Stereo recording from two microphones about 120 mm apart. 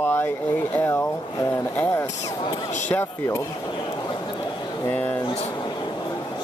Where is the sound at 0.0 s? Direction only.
20° left (ahead or behind).